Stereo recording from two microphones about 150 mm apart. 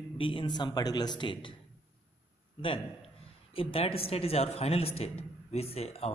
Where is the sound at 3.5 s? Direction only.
40° left (ahead or behind).